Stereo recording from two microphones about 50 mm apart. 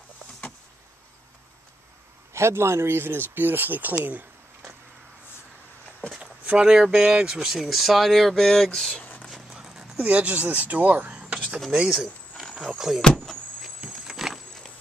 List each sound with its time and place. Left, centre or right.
2.3 s speech: right
6.4 s speech: centre
9.5 s dog: centre
9.9 s speech: right
11.8 s speech: centre
13.1 s vehicle: centre
13.7 s a sound: centre